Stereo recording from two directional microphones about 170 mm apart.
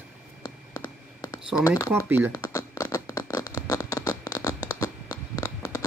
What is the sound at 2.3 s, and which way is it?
Scratch, 15° left (ahead or behind).